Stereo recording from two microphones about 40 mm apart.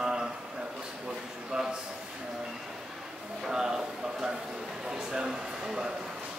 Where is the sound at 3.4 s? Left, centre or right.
Centre.